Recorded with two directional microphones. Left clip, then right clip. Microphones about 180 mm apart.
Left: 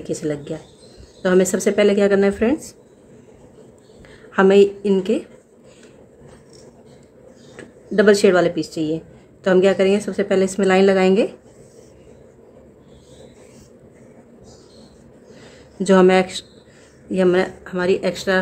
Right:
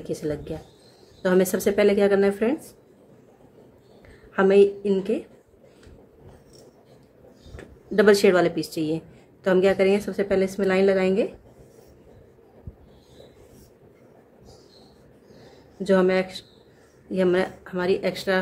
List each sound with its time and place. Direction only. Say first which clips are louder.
0.0 s speech: left 4 dB; 10° left (ahead or behind)
4.3 s speech: left 4 dB; 15° left (ahead or behind)
7.5 s speech: left 3 dB; centre (ahead or behind)
15.8 s speech: left 7 dB; 20° left (ahead or behind)